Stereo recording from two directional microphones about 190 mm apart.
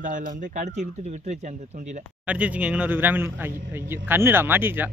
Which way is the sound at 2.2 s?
5° right (ahead or behind).